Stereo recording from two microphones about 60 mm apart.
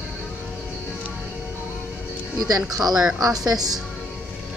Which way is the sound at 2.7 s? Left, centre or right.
Right.